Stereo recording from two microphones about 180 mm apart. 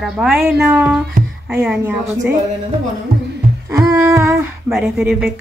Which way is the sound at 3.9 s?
15° right (ahead or behind).